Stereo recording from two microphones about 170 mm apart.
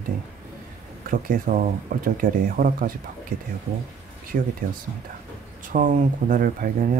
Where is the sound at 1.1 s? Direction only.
50° right (ahead or behind).